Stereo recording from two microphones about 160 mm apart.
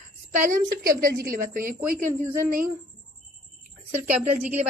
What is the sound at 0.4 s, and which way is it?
A woman's voice, 60° right (ahead or behind).